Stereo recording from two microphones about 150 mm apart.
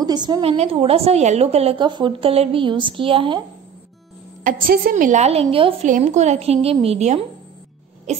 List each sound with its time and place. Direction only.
0.0 s speech: 30° right (ahead or behind)
0.5 s a woman's voice: 40° right (ahead or behind)
4.5 s a woman's voice: 75° right (ahead or behind); by 5.9 s 40° right (ahead or behind)
5.9 s a woman's voice: 55° right (ahead or behind)